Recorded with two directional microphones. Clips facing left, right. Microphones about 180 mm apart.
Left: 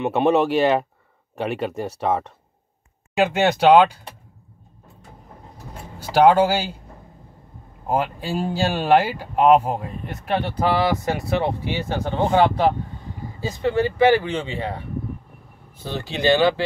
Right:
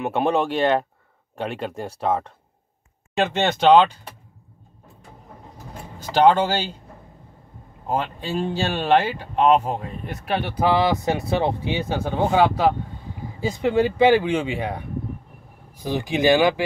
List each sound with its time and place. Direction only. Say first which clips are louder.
0.0 s speech: left 3 dB; centre (ahead or behind)
5.9 s speech: left 2 dB; 10° left (ahead or behind)
7.9 s speech: left 2 dB; 10° left (ahead or behind)
10.2 s speech: even; 5° right (ahead or behind)